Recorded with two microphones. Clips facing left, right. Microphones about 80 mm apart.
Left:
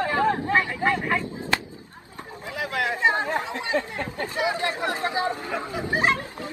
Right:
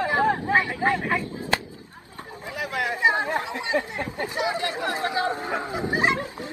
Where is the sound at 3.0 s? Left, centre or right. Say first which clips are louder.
Right 1 dB; centre.